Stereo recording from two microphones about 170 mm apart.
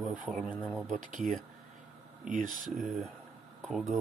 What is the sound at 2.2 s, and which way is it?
Speech, 50° right (ahead or behind).